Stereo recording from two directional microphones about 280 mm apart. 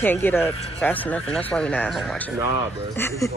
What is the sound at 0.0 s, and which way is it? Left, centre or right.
A woman's voice, centre.